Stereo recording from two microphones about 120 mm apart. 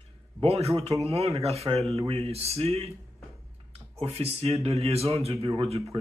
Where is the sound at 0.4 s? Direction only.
60° right (ahead or behind).